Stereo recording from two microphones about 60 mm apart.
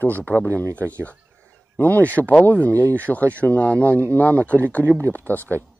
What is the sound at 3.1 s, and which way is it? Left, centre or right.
Speech, left.